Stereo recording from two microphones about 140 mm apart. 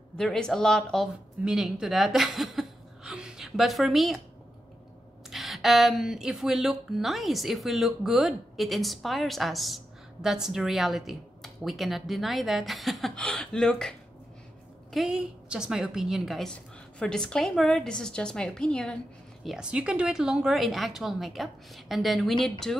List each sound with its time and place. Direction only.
0.2 s speech: 5° left (ahead or behind)
5.3 s speech: centre (ahead or behind)
19.4 s speech: 5° right (ahead or behind)